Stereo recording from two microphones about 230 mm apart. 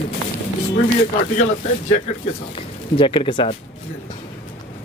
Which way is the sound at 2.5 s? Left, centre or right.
Left.